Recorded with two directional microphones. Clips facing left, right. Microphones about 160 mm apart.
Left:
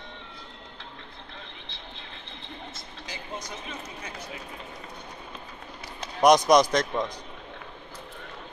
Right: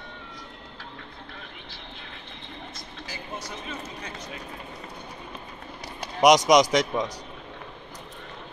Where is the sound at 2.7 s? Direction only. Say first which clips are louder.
Right 1 dB; 20° left (ahead or behind).